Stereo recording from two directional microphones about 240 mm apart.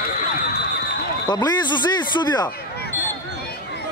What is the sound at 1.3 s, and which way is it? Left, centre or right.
Speech, centre.